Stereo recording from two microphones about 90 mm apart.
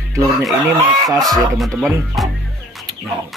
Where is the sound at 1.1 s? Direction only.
45° right (ahead or behind).